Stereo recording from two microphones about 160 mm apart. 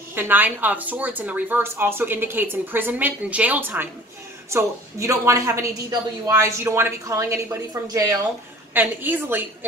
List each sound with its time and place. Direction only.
0.1 s speech: 10° right (ahead or behind)